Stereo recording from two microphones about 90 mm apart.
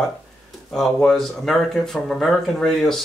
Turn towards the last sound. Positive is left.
turn(degrees=5)  # may be behind; listen again after turning